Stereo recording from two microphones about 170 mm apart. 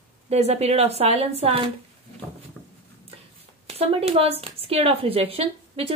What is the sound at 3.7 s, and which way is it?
A woman's voice, 35° right (ahead or behind).